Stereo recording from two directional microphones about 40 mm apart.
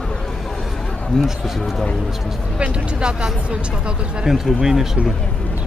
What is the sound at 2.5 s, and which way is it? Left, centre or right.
Speech, right.